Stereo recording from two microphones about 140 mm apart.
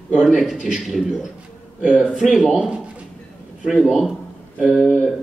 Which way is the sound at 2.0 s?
10° left (ahead or behind).